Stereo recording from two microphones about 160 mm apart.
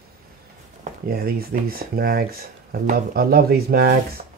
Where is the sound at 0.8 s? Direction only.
70° right (ahead or behind).